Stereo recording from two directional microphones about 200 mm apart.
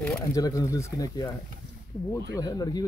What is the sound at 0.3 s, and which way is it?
Speech, 15° left (ahead or behind).